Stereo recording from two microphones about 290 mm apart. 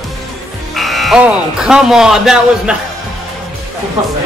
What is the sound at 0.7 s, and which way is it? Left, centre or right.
Speech, centre.